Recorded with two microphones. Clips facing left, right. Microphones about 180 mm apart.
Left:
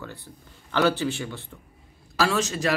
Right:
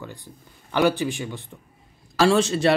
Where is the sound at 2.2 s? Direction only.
30° right (ahead or behind).